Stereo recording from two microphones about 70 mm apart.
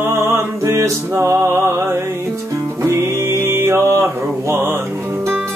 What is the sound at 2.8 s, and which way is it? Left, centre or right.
Music, right.